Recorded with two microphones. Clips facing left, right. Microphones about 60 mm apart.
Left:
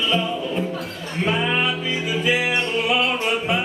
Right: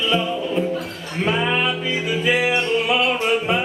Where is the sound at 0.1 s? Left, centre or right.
Centre.